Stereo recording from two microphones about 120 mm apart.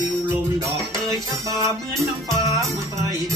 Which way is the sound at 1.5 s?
25° right (ahead or behind).